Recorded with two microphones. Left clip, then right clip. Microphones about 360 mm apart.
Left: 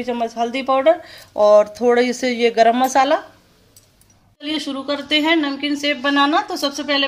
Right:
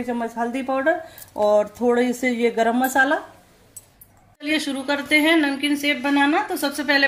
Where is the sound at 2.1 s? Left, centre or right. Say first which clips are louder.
Left 5 dB; left.